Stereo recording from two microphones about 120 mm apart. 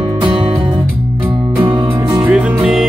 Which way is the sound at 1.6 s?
45° right (ahead or behind).